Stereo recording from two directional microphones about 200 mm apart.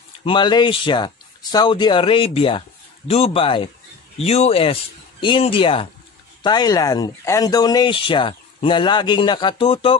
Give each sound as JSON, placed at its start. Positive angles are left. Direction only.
{"t": 0.2, "sound": "speech", "side_deg": 25}